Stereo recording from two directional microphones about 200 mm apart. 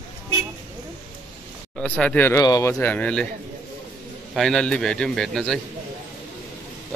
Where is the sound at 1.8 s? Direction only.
5° left (ahead or behind).